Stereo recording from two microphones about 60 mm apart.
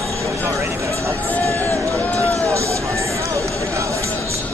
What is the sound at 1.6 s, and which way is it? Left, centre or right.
Run, left.